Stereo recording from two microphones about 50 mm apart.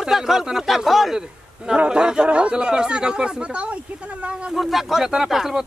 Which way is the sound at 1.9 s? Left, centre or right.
Centre.